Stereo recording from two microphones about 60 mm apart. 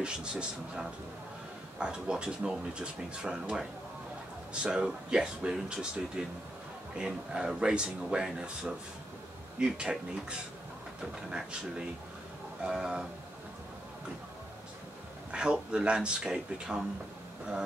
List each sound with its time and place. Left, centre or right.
0.0 s speech: centre
12.6 s speech: centre
15.3 s speech: centre